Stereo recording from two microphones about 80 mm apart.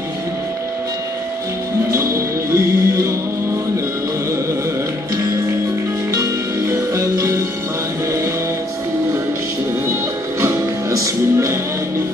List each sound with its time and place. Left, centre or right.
1.9 s music: right
6.1 s music: right
10.4 s music: right